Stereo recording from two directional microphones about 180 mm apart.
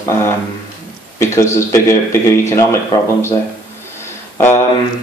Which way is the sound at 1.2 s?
15° left (ahead or behind).